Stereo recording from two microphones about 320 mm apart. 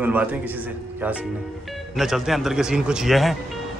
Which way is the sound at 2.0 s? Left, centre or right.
Centre.